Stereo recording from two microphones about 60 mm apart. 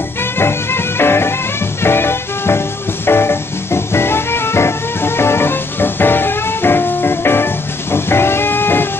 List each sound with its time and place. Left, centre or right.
0.2 s music: left